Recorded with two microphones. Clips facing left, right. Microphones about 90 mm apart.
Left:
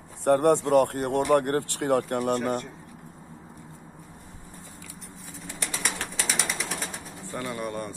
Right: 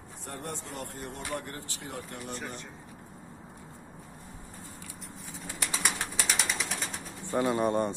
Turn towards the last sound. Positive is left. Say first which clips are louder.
# right 6 dB
turn(degrees=-25)  # may be behind; listen again after turning